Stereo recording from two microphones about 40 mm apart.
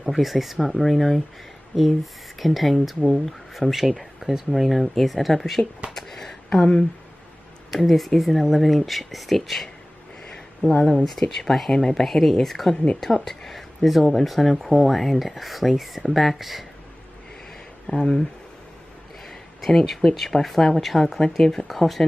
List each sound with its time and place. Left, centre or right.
0.0 s speech: centre
5.9 s a sound: centre
6.6 s speech: left
7.7 s speech: centre
10.6 s speech: left
11.1 s speech: centre
12.7 s speech: left
13.0 s speech: centre
17.8 s speech: centre
19.2 s a sound: centre
20.2 s speech: centre
21.6 s speech: centre